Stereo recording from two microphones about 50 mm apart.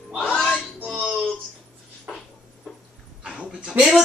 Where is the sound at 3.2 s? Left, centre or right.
Centre.